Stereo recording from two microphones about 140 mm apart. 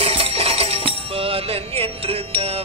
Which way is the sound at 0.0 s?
45° right (ahead or behind).